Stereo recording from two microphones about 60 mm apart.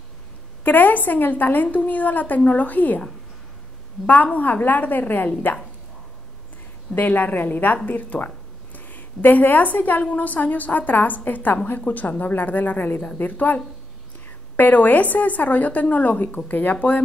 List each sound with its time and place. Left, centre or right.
0.7 s a woman's voice: left
4.0 s a woman's voice: left
7.0 s a woman's voice: left
14.6 s a woman's voice: left